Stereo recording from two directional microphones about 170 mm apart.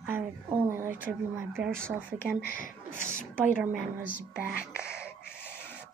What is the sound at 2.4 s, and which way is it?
Speech, 60° left (ahead or behind).